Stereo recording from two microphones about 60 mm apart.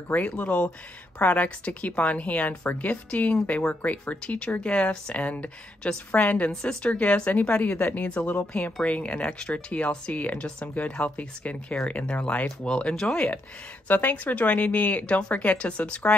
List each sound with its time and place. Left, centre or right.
0.1 s speech: left
6.5 s speech: centre
13.8 s speech: left